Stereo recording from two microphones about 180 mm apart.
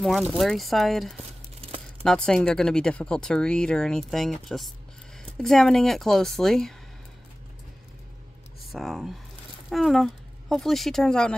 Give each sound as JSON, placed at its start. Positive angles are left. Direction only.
{"t": 0.0, "sound": "speech", "side_deg": 0}
{"t": 1.6, "sound": "crumpling", "side_deg": -35}
{"t": 2.0, "sound": "speech", "side_deg": 5}
{"t": 8.7, "sound": "speech", "side_deg": 0}